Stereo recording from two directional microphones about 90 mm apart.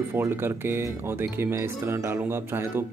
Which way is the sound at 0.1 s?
25° right (ahead or behind).